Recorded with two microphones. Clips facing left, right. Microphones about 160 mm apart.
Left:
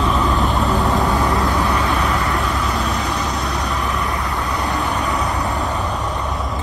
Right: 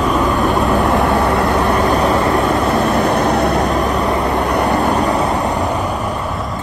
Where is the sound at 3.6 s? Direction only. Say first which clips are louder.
Right 7 dB; 40° right (ahead or behind).